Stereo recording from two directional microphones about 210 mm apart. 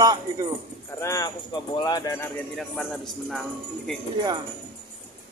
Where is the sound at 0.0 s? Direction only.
20° right (ahead or behind).